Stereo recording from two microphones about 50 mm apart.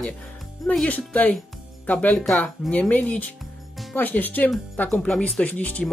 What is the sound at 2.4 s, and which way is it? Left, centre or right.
Speech, left.